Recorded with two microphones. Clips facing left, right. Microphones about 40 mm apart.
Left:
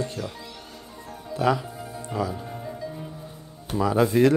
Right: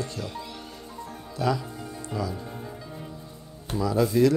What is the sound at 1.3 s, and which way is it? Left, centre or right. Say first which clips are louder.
Speech: left 4 dB; left.